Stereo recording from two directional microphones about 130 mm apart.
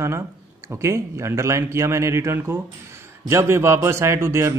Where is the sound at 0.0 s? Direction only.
20° right (ahead or behind).